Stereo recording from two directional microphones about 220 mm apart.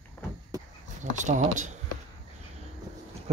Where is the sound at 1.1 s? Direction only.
35° right (ahead or behind).